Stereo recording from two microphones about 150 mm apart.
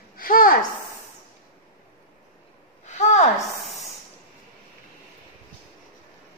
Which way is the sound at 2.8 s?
50° left (ahead or behind).